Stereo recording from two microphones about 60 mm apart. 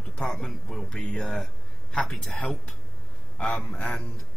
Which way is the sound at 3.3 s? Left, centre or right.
Centre.